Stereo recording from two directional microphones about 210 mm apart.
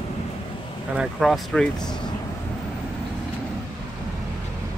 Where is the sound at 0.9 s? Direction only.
Centre (ahead or behind).